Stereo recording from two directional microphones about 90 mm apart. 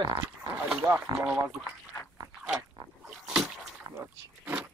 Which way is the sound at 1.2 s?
10° right (ahead or behind).